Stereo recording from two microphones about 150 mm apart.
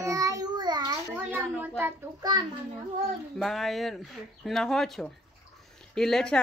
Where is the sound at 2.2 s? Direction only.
30° right (ahead or behind).